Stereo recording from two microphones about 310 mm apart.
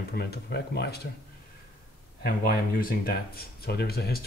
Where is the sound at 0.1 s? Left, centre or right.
Left.